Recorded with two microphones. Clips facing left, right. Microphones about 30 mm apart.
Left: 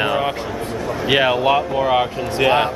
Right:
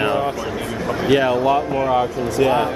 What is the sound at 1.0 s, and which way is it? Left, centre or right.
Speech, left.